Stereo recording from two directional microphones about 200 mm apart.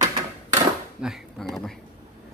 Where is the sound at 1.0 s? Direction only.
Centre (ahead or behind).